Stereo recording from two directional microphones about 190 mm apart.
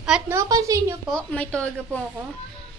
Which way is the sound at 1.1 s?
5° left (ahead or behind).